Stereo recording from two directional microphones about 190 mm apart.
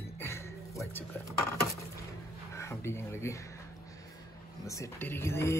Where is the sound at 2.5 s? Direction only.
15° left (ahead or behind).